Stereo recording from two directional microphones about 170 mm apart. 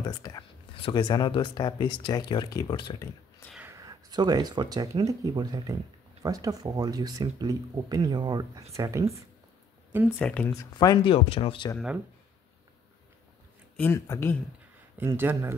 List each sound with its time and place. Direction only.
0.0 s speech: 20° left (ahead or behind)
3.5 s speech: 15° right (ahead or behind)
10.1 s speech: 10° left (ahead or behind)
10.5 s speech: 20° left (ahead or behind)
13.7 s speech: 15° left (ahead or behind)
15.0 s speech: 10° right (ahead or behind)